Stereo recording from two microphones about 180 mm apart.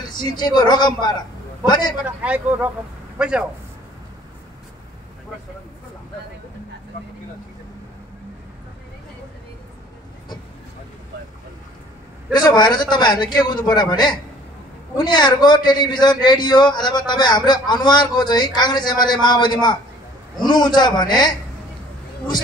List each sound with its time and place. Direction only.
0.0 s a man's voice: 25° left (ahead or behind)
2.0 s a man's voice: 10° right (ahead or behind)
12.3 s a man's voice: 25° left (ahead or behind)